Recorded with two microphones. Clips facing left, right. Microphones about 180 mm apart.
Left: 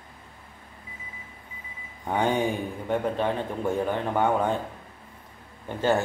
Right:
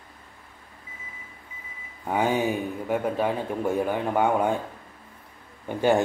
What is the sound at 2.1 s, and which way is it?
A man's voice, 5° right (ahead or behind).